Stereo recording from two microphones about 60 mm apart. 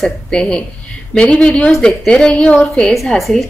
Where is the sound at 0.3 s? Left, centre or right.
Centre.